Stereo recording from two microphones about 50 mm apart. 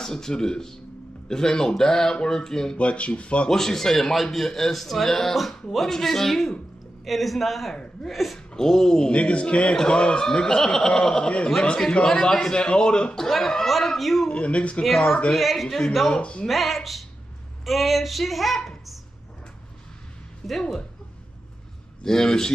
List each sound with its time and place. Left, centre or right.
0.0 s a man's voice: centre
2.8 s speech: left
3.4 s a man's voice: centre
7.7 s speech: centre
8.1 s a man's voice: centre
14.3 s speech: left
14.9 s a man's voice: centre
16.2 s speech: left
16.4 s a man's voice: centre
20.4 s a man's voice: centre
22.0 s a man's voice: centre